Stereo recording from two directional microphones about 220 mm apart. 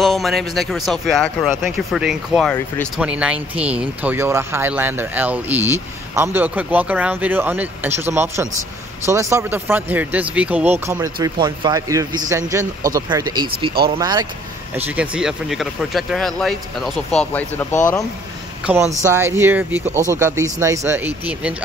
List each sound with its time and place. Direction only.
0.0 s speech: centre (ahead or behind); by 14.2 s 20° right (ahead or behind)
14.8 s speech: 5° right (ahead or behind); by 17.7 s 10° left (ahead or behind)
18.7 s speech: 5° right (ahead or behind)